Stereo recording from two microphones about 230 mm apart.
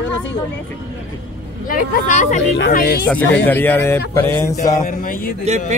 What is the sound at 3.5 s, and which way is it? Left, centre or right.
Speech, centre.